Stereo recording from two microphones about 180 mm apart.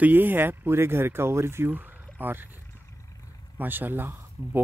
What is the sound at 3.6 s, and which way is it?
Speech, 10° right (ahead or behind).